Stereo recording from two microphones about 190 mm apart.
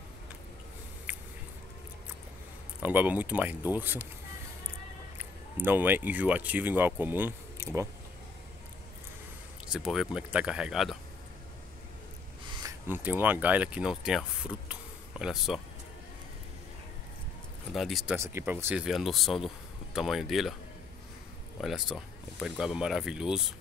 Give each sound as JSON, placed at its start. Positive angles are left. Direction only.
{"t": 2.8, "sound": "speech", "side_deg": -10}
{"t": 5.1, "sound": "speech", "side_deg": -10}
{"t": 9.7, "sound": "speech", "side_deg": -5}
{"t": 12.6, "sound": "speech", "side_deg": -10}
{"t": 17.7, "sound": "speech", "side_deg": 0}
{"t": 18.1, "sound": "speech", "side_deg": -15}
{"t": 21.5, "sound": "speech", "side_deg": 0}